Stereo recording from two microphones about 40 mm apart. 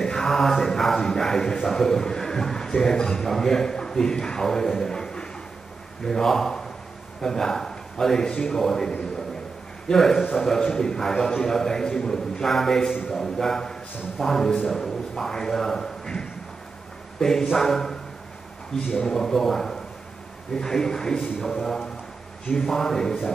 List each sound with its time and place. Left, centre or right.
0.0 s mantra: centre
1.0 s a sound: centre
1.7 s a man's voice: centre
4.8 s a sound: centre
6.0 s a man's voice: centre
9.9 s a man's voice: centre
19.0 s a man's voice: centre
22.6 s a man's voice: centre